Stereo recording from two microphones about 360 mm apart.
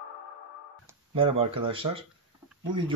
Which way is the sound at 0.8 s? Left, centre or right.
Centre.